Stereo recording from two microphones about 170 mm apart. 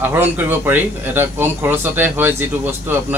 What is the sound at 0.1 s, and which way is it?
A man's voice, 10° right (ahead or behind).